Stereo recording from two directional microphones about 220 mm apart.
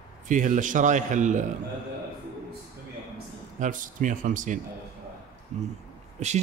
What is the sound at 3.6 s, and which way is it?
Speech, 35° right (ahead or behind).